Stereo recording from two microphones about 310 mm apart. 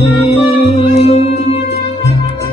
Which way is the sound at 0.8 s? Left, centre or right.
Centre.